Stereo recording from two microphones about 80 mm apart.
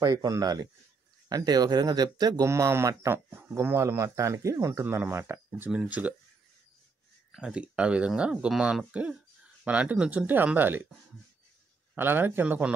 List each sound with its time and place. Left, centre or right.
0.0 s speech: right
2.4 s speech: right
3.3 s speech: right
4.8 s speech: right
5.7 s speech: centre
7.3 s speech: centre
11.9 s speech: right